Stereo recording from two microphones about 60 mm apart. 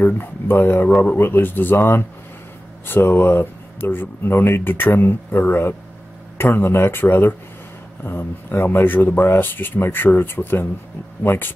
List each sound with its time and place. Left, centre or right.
0.0 s speech: left